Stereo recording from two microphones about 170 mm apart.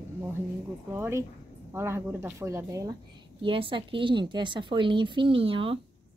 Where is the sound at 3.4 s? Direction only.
30° right (ahead or behind).